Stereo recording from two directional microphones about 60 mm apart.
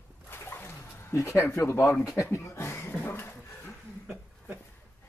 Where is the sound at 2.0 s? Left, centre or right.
Left.